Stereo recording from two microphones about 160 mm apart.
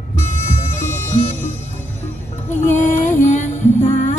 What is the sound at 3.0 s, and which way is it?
Music, 50° left (ahead or behind).